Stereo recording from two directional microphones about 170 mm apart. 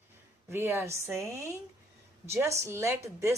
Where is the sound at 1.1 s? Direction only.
Centre (ahead or behind).